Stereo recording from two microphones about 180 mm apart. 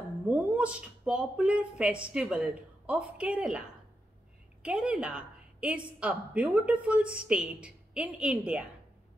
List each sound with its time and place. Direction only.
0.3 s a woman's voice: 5° right (ahead or behind)
4.6 s a woman's voice: 5° right (ahead or behind)